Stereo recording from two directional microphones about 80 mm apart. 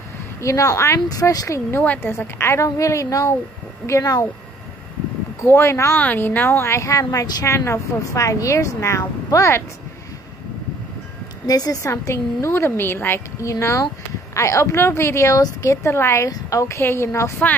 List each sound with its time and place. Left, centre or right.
0.4 s a woman's voice: left
1.0 s speech: left
1.7 s a woman's voice: left
5.4 s a woman's voice: left
5.9 s a woman's voice: left
11.4 s a woman's voice: left
13.4 s a woman's voice: left
16.3 s a woman's voice: left